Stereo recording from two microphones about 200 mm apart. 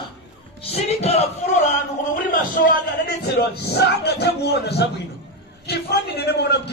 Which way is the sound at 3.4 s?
55° left (ahead or behind).